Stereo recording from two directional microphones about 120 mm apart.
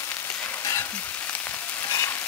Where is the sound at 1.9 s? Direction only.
25° left (ahead or behind).